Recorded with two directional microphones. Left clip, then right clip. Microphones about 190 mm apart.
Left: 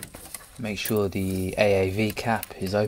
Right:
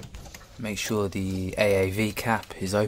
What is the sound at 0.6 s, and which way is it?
Speech, 5° right (ahead or behind).